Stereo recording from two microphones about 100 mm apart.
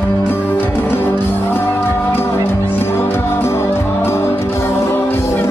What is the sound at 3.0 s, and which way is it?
Music, 25° left (ahead or behind).